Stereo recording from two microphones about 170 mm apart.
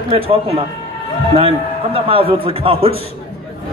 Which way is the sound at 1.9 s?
35° right (ahead or behind).